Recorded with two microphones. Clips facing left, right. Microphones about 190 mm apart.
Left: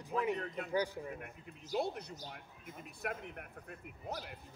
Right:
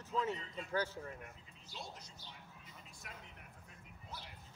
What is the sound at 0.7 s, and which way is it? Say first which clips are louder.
Speech: left 3 dB; 15° left (ahead or behind).